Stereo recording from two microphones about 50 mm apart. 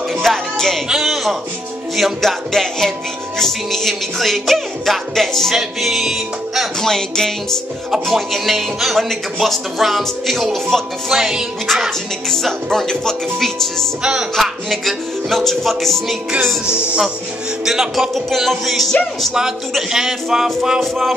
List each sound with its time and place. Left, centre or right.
0.1 s music: centre
0.8 s a man's voice: centre
2.5 s speech: centre
5.5 s speech: centre
6.8 s speech: centre
7.9 s speech: centre
11.1 s music: centre
12.3 s speech: centre
16.6 s speech: left
17.6 s music: centre
18.1 s speech: centre
19.9 s music: centre